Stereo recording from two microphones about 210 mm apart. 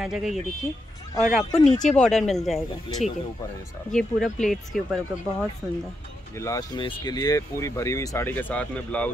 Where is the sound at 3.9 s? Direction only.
Centre (ahead or behind).